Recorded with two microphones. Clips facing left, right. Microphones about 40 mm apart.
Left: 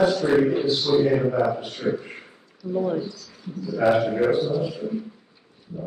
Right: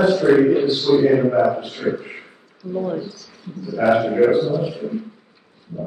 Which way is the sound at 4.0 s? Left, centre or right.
Right.